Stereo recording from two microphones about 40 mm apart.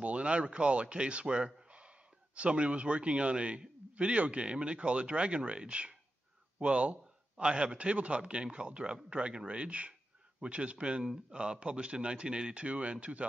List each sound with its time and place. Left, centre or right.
0.0 s a man's voice: right